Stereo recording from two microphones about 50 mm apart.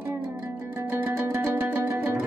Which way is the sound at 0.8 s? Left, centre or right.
Right.